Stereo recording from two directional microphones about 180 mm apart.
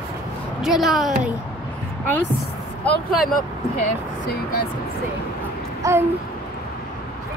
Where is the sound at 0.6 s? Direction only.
Centre (ahead or behind).